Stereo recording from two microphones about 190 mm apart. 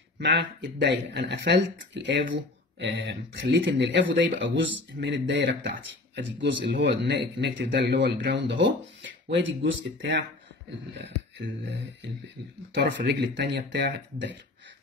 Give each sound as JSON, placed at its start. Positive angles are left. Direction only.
{"t": 0.2, "sound": "speech", "side_deg": -65}